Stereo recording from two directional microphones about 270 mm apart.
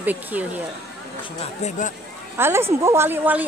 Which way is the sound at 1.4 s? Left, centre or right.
Left.